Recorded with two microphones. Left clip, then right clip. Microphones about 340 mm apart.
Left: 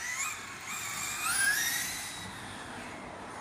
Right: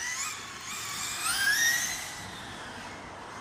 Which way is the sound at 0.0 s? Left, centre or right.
Centre.